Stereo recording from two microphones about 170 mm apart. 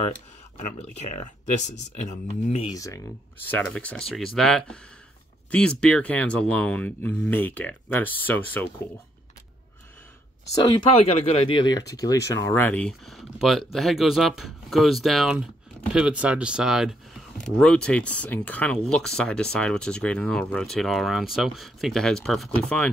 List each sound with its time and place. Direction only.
0.6 s speech: 45° left (ahead or behind)
2.7 s speech: 20° left (ahead or behind)
10.5 s speech: 25° left (ahead or behind)
10.9 s speech: 35° left (ahead or behind); by 22.8 s 5° left (ahead or behind)